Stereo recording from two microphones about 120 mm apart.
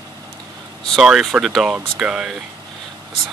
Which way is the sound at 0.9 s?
Centre (ahead or behind).